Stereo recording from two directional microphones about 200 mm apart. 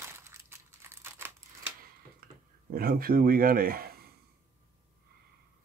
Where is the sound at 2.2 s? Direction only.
50° right (ahead or behind).